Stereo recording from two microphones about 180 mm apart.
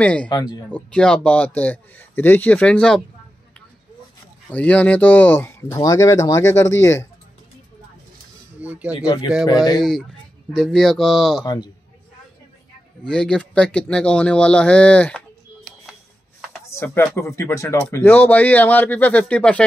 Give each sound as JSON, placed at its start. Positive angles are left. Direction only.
{"t": 0.0, "sound": "speech", "side_deg": 5}
{"t": 0.3, "sound": "speech", "side_deg": 20}
{"t": 0.7, "sound": "speech", "side_deg": 5}
{"t": 4.5, "sound": "speech", "side_deg": 10}
{"t": 8.5, "sound": "a sound", "side_deg": -10}
{"t": 9.0, "sound": "speech", "side_deg": 20}
{"t": 10.5, "sound": "speech", "side_deg": 5}
{"t": 11.4, "sound": "speech", "side_deg": 25}
{"t": 13.0, "sound": "speech", "side_deg": 5}
{"t": 15.9, "sound": "a sound", "side_deg": -5}
{"t": 16.6, "sound": "speech", "side_deg": 15}